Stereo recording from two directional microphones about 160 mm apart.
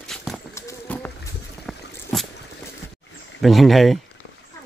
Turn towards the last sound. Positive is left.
turn(degrees=0)  # may be behind; listen again after turning